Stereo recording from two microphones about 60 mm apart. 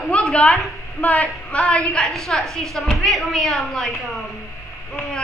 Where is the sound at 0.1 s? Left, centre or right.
Left.